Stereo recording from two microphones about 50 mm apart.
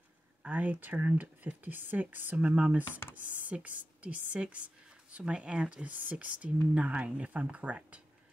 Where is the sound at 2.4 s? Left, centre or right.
Right.